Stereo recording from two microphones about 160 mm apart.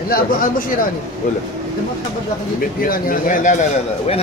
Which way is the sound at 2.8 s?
60° left (ahead or behind).